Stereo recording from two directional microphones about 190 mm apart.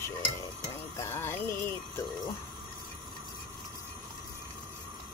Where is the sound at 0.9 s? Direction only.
15° left (ahead or behind).